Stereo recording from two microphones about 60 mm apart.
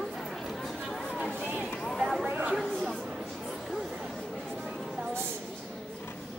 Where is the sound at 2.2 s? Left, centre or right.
Right.